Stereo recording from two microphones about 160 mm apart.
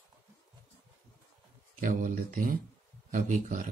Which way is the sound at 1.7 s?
60° right (ahead or behind).